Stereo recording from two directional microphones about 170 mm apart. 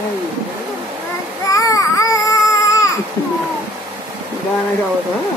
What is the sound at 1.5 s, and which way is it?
Baby cry, 20° left (ahead or behind).